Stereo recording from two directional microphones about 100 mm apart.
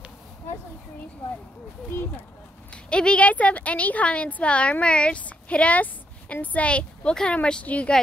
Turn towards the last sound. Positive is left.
turn(degrees=10)  # may be behind; listen again after turning